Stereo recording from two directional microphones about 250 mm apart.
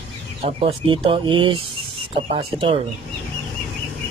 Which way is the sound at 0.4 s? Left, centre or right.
Right.